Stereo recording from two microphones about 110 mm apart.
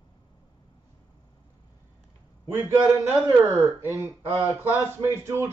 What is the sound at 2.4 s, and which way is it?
A man's voice, 20° right (ahead or behind).